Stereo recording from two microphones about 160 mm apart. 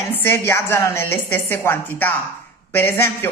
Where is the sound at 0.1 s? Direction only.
15° left (ahead or behind).